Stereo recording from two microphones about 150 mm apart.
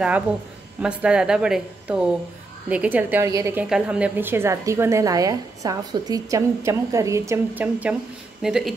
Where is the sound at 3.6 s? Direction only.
5° right (ahead or behind).